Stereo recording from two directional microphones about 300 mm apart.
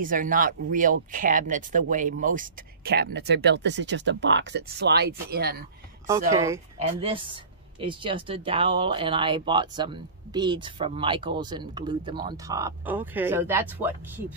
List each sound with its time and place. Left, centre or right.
0.0 s speech: right
6.3 s speech: centre